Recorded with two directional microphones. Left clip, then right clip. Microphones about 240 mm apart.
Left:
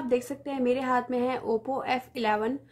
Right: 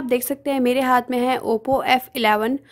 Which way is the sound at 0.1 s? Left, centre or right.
Right.